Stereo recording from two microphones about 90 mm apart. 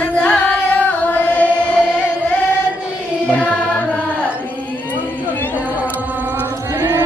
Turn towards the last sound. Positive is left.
turn(degrees=-25)  # may be behind; listen again after turning